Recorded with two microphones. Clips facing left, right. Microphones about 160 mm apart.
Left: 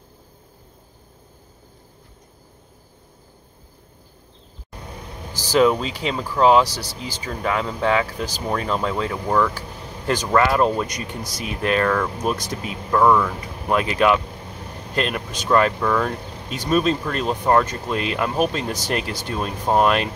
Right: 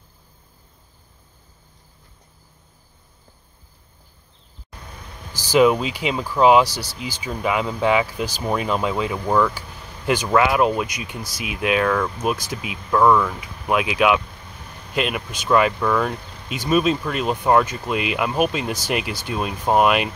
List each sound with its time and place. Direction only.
4.7 s vehicle: 25° left (ahead or behind)
5.3 s speech: 5° right (ahead or behind)
9.7 s vehicle: 25° left (ahead or behind)
10.0 s speech: 5° right (ahead or behind)
12.5 s speech: 35° left (ahead or behind)
12.9 s speech: centre (ahead or behind)
14.2 s a sound: 30° left (ahead or behind)
15.0 s speech: 5° right (ahead or behind)
16.2 s vehicle: 30° left (ahead or behind)
16.4 s speech: 5° right (ahead or behind)